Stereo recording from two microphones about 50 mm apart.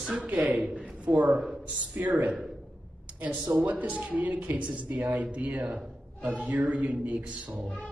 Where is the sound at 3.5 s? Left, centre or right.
Right.